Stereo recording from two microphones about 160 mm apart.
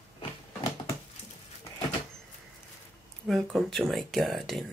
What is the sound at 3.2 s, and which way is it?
Speech, centre (ahead or behind).